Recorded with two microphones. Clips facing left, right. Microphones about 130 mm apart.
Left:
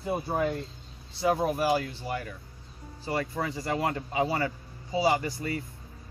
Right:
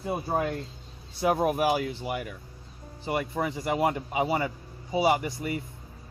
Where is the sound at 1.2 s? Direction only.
10° right (ahead or behind).